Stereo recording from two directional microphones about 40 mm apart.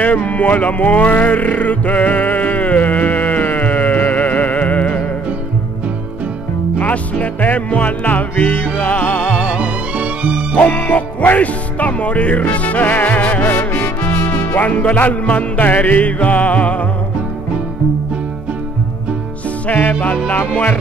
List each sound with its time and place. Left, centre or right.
0.0 s music: left
6.8 s music: left
9.6 s music: right
10.6 s music: left
14.2 s music: left
14.6 s music: left
19.7 s music: left